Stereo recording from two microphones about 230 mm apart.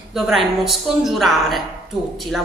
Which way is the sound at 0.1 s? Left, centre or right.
Centre.